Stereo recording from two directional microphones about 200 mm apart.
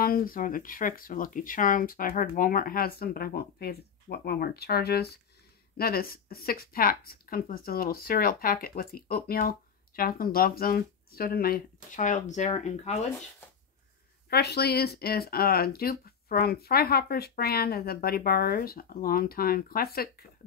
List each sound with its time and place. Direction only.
0.0 s speech: 45° left (ahead or behind)
14.3 s speech: 55° left (ahead or behind)